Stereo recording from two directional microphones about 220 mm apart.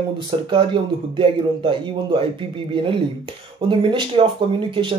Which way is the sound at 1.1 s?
25° right (ahead or behind).